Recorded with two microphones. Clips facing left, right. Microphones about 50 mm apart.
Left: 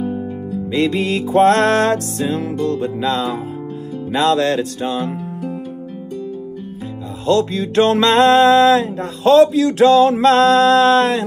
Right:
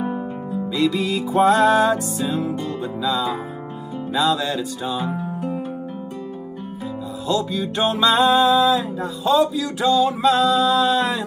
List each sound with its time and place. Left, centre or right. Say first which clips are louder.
0.0 s music: left 2 dB; right
0.7 s music: left 3 dB; left
7.2 s music: left 6 dB; left